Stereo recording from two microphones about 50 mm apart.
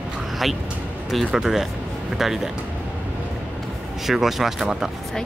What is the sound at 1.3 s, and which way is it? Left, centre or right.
Speech, centre.